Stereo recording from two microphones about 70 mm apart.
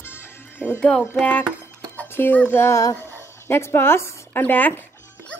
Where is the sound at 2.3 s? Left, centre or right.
Left.